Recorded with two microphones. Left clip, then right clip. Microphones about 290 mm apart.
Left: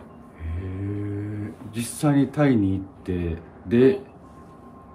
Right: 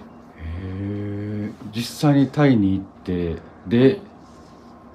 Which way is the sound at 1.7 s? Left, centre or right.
Centre.